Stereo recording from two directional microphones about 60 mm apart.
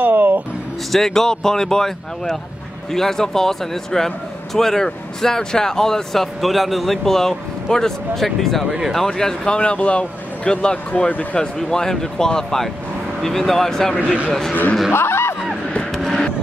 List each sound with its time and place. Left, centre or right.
0.0 s a sound: right
0.9 s speech: centre
14.5 s speech: left
14.9 s snicker: left
15.9 s music: centre